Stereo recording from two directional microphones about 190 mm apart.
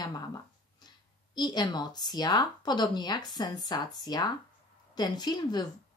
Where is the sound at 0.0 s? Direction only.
20° left (ahead or behind).